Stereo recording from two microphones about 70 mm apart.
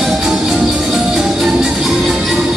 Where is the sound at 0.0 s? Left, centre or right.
Centre.